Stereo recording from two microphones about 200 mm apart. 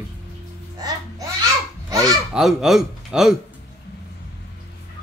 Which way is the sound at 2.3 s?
Centre (ahead or behind).